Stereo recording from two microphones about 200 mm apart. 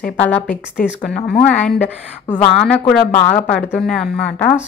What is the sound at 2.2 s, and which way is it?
Speech, 20° left (ahead or behind).